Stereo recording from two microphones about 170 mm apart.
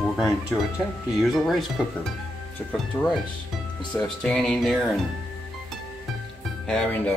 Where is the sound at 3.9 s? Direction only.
5° left (ahead or behind).